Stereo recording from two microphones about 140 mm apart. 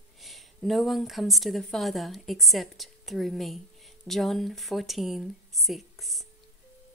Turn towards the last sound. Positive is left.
turn(degrees=0)  # may be behind; listen again after turning